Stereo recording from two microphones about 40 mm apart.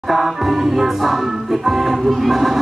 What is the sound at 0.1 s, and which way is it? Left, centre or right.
Music, centre.